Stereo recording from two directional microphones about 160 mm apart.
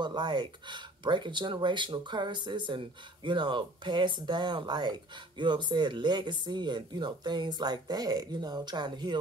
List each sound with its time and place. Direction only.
0.0 s speech: 25° right (ahead or behind)